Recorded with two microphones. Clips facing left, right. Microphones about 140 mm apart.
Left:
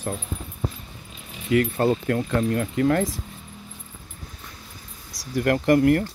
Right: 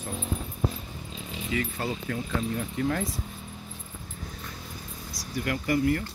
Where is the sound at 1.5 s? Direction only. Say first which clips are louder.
Left 11 dB; 55° left (ahead or behind).